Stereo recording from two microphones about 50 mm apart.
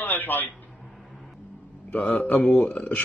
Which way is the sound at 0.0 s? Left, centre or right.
Left.